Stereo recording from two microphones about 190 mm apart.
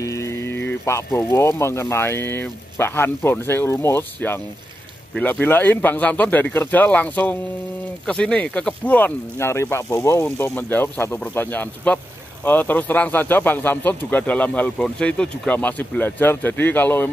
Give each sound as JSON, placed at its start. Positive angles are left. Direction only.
{"t": 0.0, "sound": "speech", "side_deg": 15}